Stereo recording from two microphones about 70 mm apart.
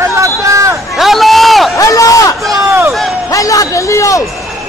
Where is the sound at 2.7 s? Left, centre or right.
Right.